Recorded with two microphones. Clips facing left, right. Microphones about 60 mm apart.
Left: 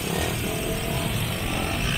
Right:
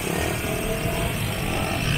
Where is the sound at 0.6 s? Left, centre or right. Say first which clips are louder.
Right 2 dB; centre.